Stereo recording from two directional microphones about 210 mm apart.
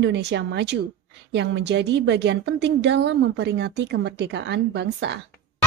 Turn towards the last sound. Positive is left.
turn(degrees=-55)  # may be behind; listen again after turning